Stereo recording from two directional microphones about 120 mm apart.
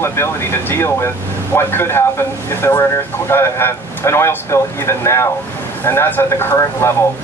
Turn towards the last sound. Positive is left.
turn(degrees=20)  # may be behind; listen again after turning